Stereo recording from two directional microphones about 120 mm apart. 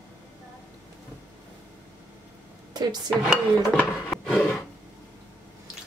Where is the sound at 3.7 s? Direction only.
10° left (ahead or behind).